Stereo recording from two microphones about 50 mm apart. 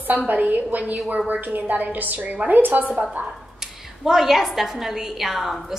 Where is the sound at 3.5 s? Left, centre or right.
Centre.